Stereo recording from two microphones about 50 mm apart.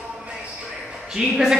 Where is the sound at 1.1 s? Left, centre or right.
Centre.